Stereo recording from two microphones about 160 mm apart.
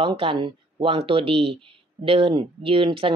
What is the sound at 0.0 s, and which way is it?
Speech, 35° right (ahead or behind).